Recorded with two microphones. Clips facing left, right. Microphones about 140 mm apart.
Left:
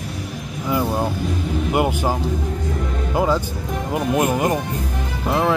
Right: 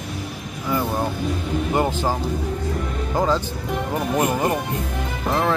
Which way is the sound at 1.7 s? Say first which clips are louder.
Left 2 dB; 15° left (ahead or behind).